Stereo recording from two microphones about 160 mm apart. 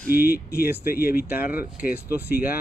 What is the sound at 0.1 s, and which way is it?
Speech, 10° right (ahead or behind).